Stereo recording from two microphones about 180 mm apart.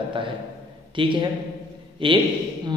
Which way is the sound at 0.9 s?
25° right (ahead or behind).